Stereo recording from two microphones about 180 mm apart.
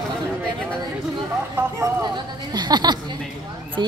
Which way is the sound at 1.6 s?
15° right (ahead or behind).